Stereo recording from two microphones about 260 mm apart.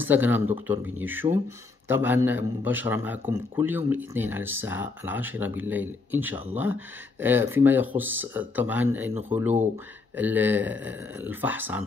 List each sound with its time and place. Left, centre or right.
0.0 s a man's voice: centre
10.1 s a man's voice: centre